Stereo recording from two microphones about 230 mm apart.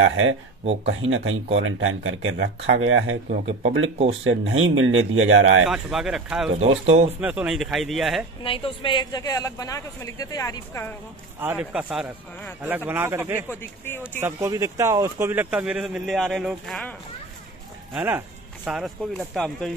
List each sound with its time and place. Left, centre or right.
0.0 s speech: right
3.3 s speech: right
4.2 s speech: right
5.7 s speech: centre
6.6 s speech: right
7.2 s speech: centre
8.5 s speech: left
11.3 s speech: centre
13.5 s speech: centre
14.2 s speech: centre
17.9 s speech: centre